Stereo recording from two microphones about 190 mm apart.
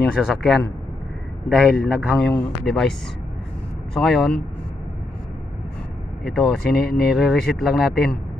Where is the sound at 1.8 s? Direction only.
Centre (ahead or behind).